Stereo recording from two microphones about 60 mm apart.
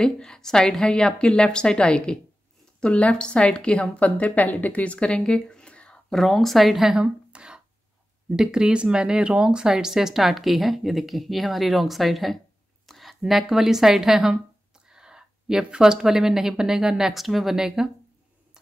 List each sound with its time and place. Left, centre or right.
0.0 s a woman's voice: centre
7.0 s a sound: centre
8.4 s a woman's voice: centre